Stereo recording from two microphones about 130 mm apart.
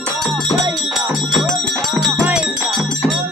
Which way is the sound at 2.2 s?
5° right (ahead or behind).